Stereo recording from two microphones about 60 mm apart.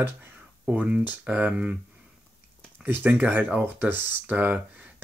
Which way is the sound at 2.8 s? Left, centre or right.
Right.